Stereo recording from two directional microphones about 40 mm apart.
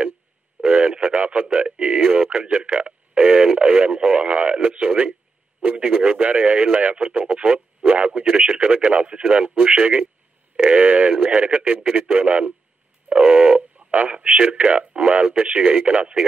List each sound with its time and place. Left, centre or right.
0.6 s a sound: right
2.3 s speech: right
4.6 s speech: right
6.0 s speech: right
8.5 s speech: right
8.9 s speech: right
13.7 s speech: right